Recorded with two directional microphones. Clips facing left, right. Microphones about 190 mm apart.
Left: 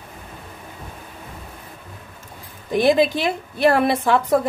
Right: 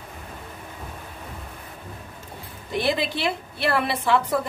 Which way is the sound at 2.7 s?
45° left (ahead or behind).